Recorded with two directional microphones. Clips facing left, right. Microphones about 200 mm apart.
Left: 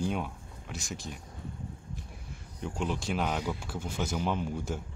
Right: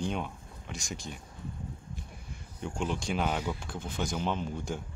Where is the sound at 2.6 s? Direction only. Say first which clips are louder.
Even; 5° left (ahead or behind).